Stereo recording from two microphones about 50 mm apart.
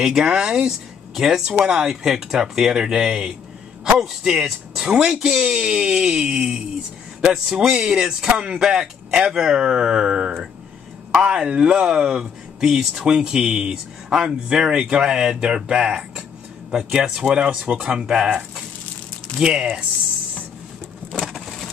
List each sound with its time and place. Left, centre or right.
0.0 s speech: centre
19.4 s speech: centre
21.1 s vehicle: centre